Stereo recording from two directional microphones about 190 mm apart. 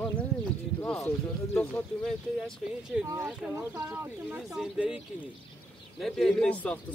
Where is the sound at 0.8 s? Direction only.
5° left (ahead or behind).